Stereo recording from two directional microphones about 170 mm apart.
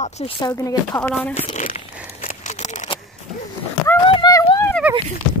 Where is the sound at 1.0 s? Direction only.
10° left (ahead or behind).